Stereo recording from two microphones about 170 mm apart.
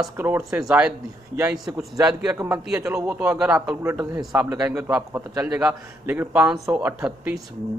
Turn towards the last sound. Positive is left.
turn(degrees=-5)  # may be behind; listen again after turning